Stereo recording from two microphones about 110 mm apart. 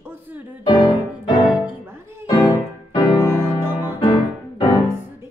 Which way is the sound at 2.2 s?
40° left (ahead or behind).